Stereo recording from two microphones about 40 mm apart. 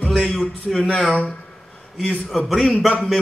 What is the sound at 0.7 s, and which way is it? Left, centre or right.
Speech, centre.